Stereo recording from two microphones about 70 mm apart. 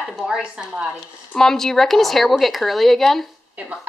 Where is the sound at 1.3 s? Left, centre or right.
Centre.